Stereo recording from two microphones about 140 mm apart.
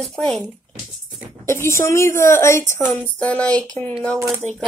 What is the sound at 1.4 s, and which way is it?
A woman's voice, 20° left (ahead or behind).